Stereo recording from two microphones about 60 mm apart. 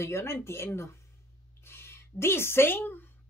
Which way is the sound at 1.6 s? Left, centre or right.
Left.